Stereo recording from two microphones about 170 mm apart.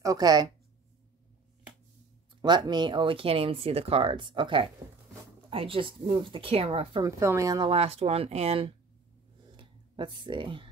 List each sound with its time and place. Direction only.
0.0 s speech: 20° right (ahead or behind)
2.4 s speech: 25° right (ahead or behind)
7.1 s speech: 20° right (ahead or behind)
7.7 s speech: 35° right (ahead or behind)
9.5 s a sound: 30° right (ahead or behind)